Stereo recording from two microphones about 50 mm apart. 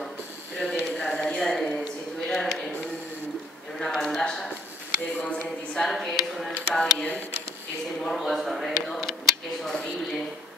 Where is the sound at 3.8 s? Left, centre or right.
Centre.